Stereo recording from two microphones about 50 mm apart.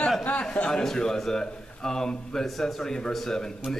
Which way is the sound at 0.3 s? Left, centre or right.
Left.